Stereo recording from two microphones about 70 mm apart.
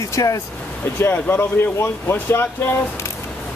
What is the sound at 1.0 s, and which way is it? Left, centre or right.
Speech, left.